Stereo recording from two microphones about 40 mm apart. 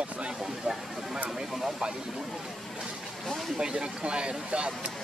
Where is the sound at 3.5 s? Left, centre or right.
Centre.